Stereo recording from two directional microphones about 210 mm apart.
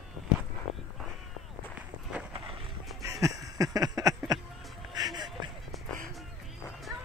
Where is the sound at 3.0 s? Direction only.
15° right (ahead or behind).